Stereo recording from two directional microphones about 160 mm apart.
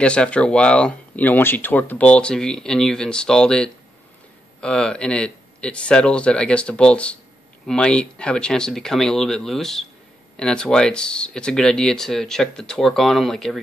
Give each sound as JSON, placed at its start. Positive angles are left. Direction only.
{"t": 0.0, "sound": "speech", "side_deg": 5}